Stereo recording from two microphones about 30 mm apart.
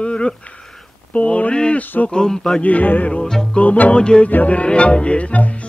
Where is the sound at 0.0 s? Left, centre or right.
Left.